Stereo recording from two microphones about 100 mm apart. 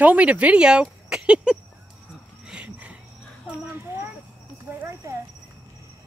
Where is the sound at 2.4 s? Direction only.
10° right (ahead or behind).